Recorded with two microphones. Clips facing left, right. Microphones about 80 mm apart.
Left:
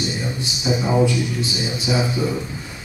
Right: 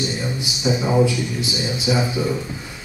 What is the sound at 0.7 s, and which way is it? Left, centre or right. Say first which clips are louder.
Speech: right 1 dB; centre.